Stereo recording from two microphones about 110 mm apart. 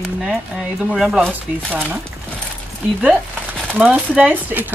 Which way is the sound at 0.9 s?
Centre (ahead or behind).